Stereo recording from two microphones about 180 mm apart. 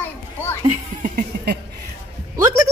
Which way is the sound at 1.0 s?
45° right (ahead or behind).